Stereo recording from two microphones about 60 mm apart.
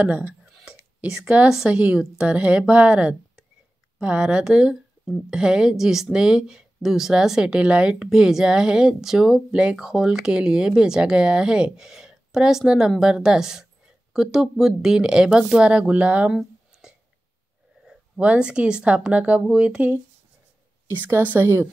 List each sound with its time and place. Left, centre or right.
0.0 s a woman's voice: right
0.7 s a sound: centre
1.0 s a woman's voice: centre
16.3 s a sound: centre
18.2 s a woman's voice: centre
20.9 s a woman's voice: right